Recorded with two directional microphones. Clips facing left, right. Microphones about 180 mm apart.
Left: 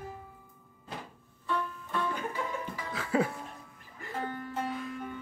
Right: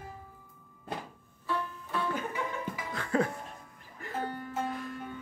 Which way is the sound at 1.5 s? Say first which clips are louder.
Left 1 dB; 5° right (ahead or behind).